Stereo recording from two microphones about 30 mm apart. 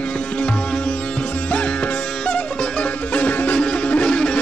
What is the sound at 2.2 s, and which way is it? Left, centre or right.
Music, left.